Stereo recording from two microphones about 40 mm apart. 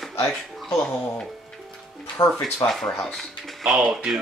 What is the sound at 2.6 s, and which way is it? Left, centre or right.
Speech, centre.